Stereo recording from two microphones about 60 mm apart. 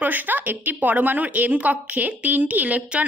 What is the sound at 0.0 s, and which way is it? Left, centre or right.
A woman's voice, right.